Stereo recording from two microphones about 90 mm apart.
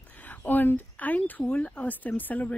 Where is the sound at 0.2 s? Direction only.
20° left (ahead or behind).